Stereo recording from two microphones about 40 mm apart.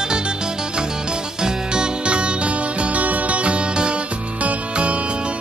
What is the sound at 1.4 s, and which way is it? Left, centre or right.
Music, right.